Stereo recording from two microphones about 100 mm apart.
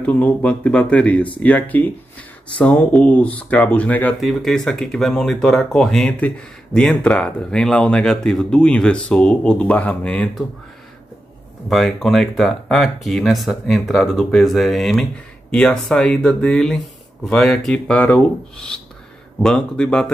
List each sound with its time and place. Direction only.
0.0 s speech: 15° left (ahead or behind)
4.2 s speech: centre (ahead or behind)
11.7 s speech: centre (ahead or behind)